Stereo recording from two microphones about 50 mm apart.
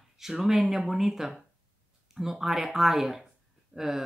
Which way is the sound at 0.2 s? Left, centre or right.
Centre.